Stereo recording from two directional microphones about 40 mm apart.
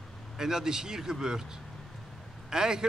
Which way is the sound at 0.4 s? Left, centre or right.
Centre.